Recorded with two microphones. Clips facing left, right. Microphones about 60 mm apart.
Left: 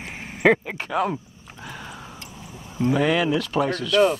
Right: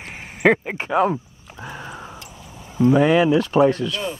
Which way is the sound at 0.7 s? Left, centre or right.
Right.